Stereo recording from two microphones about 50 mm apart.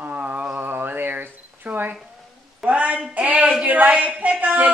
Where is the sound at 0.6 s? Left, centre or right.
Right.